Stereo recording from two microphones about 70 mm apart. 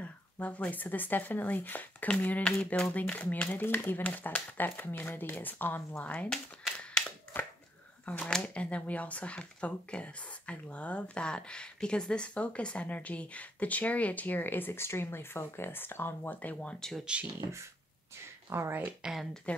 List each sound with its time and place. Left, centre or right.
0.0 s speech: centre
2.5 s speech: centre
7.3 s chopping: left
8.0 s a sound: centre
8.3 s speech: centre
17.0 s speech: centre
17.4 s speech: right
18.7 s speech: right